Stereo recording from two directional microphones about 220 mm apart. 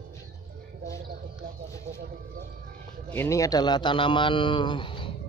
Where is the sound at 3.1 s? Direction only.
10° left (ahead or behind).